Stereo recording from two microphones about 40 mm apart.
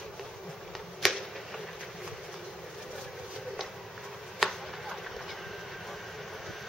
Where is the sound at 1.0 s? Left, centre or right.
Centre.